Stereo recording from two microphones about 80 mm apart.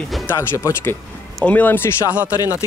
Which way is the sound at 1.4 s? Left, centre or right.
Left.